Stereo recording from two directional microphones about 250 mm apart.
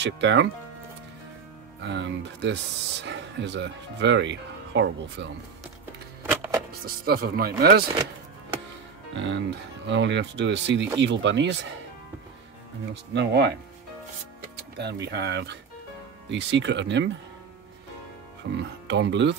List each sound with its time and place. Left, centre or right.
0.0 s speech: right
1.8 s speech: right
6.7 s speech: right
9.1 s speech: right
12.9 s speech: right
14.8 s speech: right
18.4 s speech: right